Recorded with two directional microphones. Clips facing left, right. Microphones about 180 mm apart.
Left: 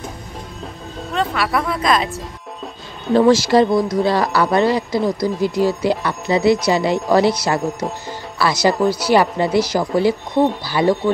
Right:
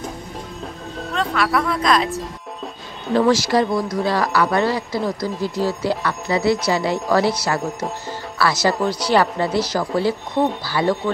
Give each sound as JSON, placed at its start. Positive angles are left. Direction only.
{"t": 1.1, "sound": "speech", "side_deg": 0}
{"t": 3.2, "sound": "speech", "side_deg": 25}
{"t": 8.7, "sound": "speech", "side_deg": 5}